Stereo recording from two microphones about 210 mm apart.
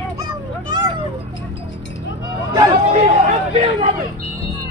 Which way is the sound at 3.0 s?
35° right (ahead or behind).